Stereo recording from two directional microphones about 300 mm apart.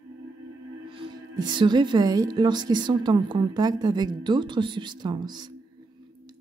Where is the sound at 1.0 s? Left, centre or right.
Centre.